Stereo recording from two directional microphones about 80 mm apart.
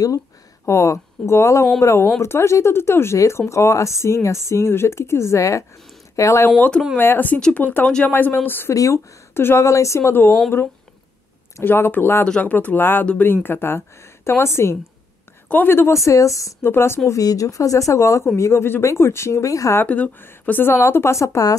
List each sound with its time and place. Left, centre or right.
0.7 s speech: left
7.0 s a woman's voice: left
8.1 s a woman's voice: left
8.7 s speech: left
9.3 s speech: left
9.7 s speech: left
11.6 s a woman's voice: left
16.0 s speech: left
16.6 s speech: left
19.8 s speech: left